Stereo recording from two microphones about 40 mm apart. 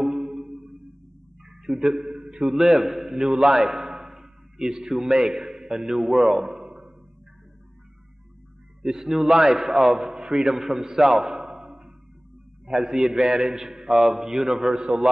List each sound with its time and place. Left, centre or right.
0.0 s music: centre
1.4 s a sound: centre
1.9 s a man's voice: centre
8.8 s a man's voice: centre